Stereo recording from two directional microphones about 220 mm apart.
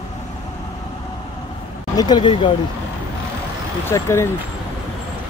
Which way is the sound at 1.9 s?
20° left (ahead or behind).